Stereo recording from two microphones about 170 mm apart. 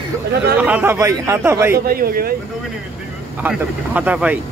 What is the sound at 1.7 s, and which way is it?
Speech, 60° right (ahead or behind).